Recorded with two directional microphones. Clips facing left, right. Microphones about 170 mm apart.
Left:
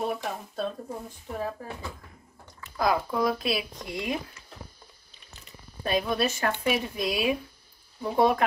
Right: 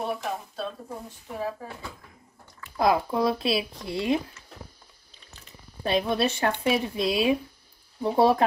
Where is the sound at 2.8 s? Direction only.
30° right (ahead or behind).